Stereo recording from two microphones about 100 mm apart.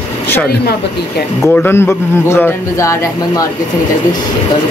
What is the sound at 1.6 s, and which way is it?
A man's voice, 25° left (ahead or behind).